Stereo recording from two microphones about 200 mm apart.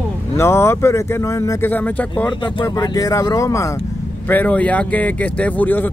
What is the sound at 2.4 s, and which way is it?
Speech, 20° left (ahead or behind).